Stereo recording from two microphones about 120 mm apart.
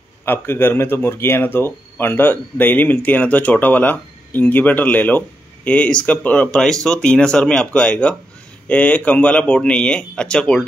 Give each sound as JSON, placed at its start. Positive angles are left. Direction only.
{"t": 0.2, "sound": "speech", "side_deg": 20}